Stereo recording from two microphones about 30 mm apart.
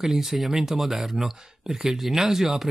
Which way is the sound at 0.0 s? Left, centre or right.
Centre.